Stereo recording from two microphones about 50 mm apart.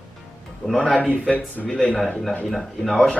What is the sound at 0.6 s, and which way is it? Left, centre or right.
Speech, left.